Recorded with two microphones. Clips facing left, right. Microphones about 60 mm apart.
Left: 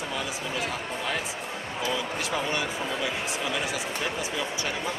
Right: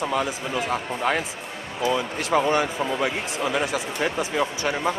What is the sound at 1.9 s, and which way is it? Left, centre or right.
Speech, right.